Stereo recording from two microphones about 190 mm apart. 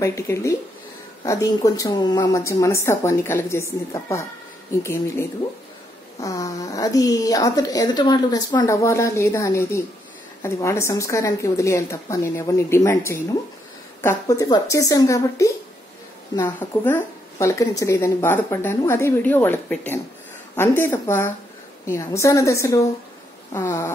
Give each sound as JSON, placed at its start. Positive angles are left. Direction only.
{"t": 0.0, "sound": "speech", "side_deg": 15}
{"t": 6.2, "sound": "speech", "side_deg": 15}